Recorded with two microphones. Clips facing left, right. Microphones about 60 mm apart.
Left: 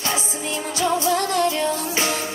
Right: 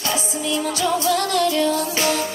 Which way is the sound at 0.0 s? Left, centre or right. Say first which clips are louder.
Right 2 dB; left.